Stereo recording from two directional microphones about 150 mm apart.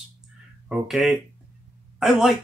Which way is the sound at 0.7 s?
5° right (ahead or behind).